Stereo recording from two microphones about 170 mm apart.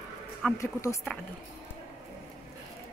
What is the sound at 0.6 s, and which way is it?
Speech, 20° left (ahead or behind).